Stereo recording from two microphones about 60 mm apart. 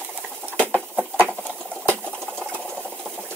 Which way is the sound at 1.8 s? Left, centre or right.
Centre.